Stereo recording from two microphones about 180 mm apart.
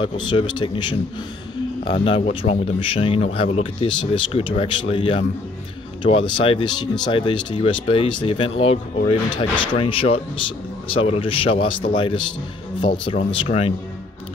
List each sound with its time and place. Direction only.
0.0 s speech: 25° left (ahead or behind)